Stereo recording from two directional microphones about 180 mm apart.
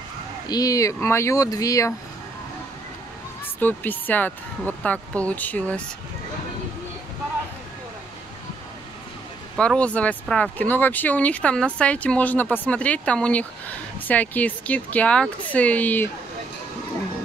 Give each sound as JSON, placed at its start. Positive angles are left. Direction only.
{"t": 0.5, "sound": "speech", "side_deg": 20}
{"t": 3.5, "sound": "speech", "side_deg": 10}
{"t": 9.6, "sound": "speech", "side_deg": 5}